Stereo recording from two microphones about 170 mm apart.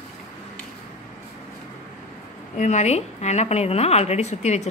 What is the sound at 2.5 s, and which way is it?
A woman's voice, 40° left (ahead or behind).